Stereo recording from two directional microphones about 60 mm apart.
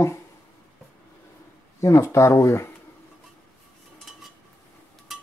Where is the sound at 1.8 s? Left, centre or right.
Left.